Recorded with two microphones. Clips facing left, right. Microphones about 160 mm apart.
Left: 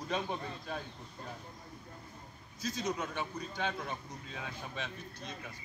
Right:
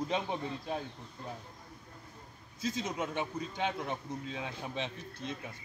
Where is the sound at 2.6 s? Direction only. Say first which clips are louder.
Right 1 dB; 25° right (ahead or behind).